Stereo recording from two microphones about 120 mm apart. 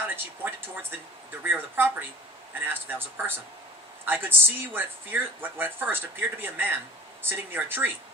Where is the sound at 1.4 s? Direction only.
15° right (ahead or behind).